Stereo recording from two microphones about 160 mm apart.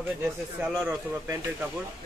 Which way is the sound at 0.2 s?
10° right (ahead or behind).